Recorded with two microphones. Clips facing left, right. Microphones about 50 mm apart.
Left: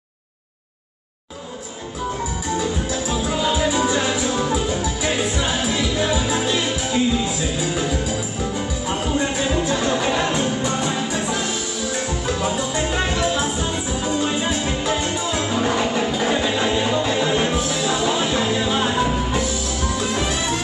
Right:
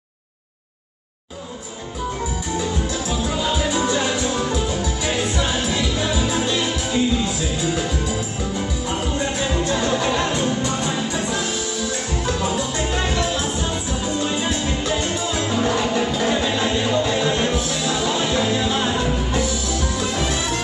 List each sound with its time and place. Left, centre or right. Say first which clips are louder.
3.1 s music: left 2 dB; centre
9.1 s music: left 4 dB; centre